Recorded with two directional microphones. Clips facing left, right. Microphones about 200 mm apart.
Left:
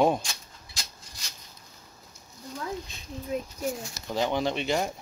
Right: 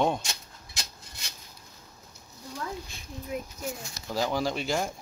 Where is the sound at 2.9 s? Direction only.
20° left (ahead or behind).